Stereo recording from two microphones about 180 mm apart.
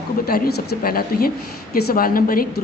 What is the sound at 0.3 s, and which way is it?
A woman's voice, 55° left (ahead or behind).